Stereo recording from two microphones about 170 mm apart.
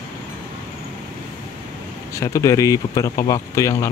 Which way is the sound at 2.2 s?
20° left (ahead or behind).